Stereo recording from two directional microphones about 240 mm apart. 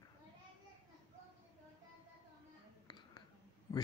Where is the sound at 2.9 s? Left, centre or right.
Centre.